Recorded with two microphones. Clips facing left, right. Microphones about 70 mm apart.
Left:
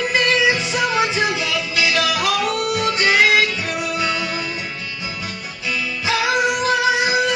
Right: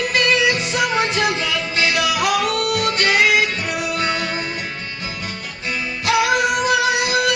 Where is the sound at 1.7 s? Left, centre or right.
Right.